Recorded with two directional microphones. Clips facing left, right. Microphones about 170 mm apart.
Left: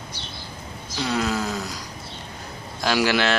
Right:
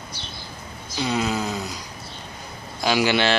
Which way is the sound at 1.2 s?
Centre (ahead or behind).